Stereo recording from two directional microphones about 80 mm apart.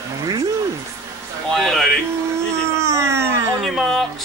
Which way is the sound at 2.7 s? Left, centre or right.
Right.